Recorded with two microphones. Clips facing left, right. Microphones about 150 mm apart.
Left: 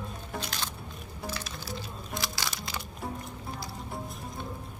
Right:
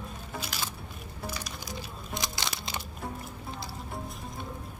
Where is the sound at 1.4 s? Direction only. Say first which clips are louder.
Left 1 dB; 15° right (ahead or behind).